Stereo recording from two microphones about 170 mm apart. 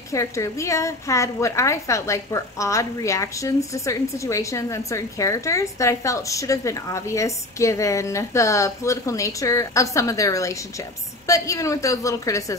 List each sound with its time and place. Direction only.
0.1 s a woman's voice: 15° left (ahead or behind)